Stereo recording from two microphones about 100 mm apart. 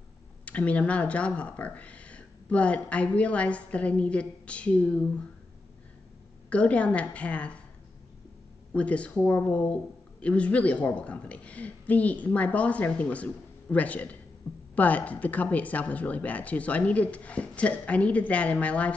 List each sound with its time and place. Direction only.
0.5 s speech: 15° left (ahead or behind)
6.5 s speech: 15° left (ahead or behind)
8.7 s a woman's voice: 10° left (ahead or behind)